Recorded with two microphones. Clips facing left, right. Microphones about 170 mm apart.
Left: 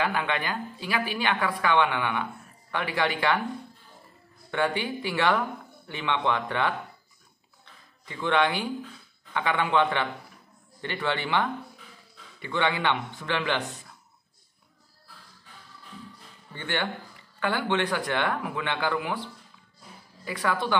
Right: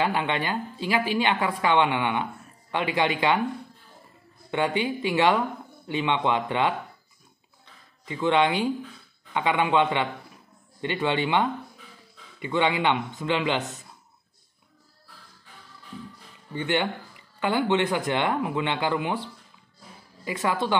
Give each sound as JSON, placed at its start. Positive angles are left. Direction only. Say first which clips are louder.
{"t": 0.0, "sound": "a woman's voice", "louder": "right 2 dB", "side_deg": -25}
{"t": 4.5, "sound": "a woman's voice", "louder": "right 2 dB", "side_deg": -15}
{"t": 8.0, "sound": "a woman's voice", "louder": "right 3 dB", "side_deg": -20}
{"t": 16.5, "sound": "a woman's voice", "louder": "right 5 dB", "side_deg": -20}
{"t": 20.2, "sound": "a woman's voice", "louder": "right 2 dB", "side_deg": -20}